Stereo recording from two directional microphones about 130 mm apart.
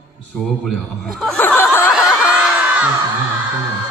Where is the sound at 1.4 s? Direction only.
15° left (ahead or behind).